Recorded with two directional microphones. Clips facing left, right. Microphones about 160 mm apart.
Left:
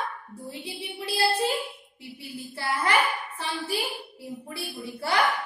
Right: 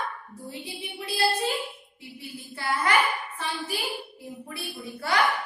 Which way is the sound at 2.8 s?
30° left (ahead or behind).